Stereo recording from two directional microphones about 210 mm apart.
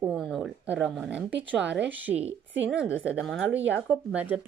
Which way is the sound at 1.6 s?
60° right (ahead or behind).